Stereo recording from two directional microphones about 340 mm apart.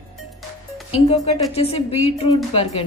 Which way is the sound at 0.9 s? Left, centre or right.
Centre.